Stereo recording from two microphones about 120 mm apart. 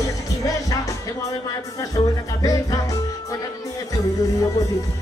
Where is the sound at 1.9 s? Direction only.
30° left (ahead or behind).